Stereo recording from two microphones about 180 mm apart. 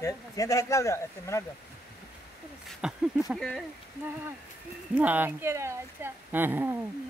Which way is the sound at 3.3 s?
5° left (ahead or behind).